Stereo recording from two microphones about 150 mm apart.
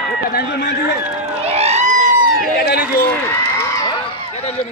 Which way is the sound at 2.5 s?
90° left.